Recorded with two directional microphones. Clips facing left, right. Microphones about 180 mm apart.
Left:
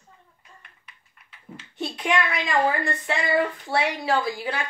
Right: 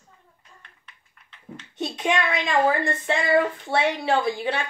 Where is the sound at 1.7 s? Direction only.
20° right (ahead or behind).